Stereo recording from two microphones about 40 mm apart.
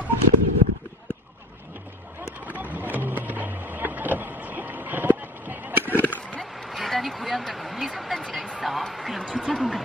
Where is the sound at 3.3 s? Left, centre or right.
Right.